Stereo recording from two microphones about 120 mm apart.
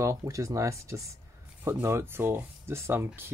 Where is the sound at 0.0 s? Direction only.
25° right (ahead or behind).